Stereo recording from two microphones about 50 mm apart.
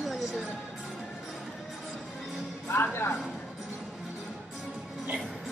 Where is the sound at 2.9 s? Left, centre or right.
Left.